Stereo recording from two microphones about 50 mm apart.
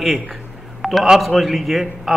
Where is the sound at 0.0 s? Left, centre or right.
Centre.